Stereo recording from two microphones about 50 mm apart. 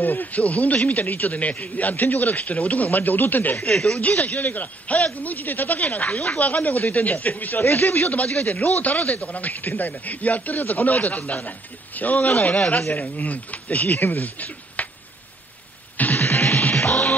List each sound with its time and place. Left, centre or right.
0.0 s speech: left
3.5 s speech: centre
4.0 s speech: left
16.0 s music: left
16.7 s music: centre